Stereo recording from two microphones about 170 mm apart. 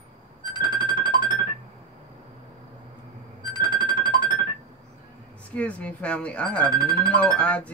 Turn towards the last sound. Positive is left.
turn(degrees=5)  # may be behind; listen again after turning